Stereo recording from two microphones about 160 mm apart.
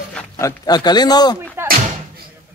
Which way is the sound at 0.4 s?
25° left (ahead or behind).